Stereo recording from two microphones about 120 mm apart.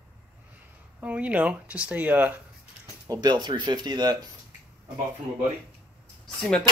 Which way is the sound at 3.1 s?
35° right (ahead or behind).